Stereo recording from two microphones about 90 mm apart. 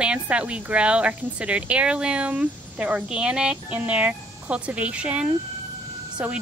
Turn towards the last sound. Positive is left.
turn(degrees=-10)  # may be behind; listen again after turning